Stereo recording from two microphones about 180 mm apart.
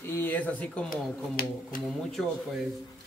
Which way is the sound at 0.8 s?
50° left (ahead or behind).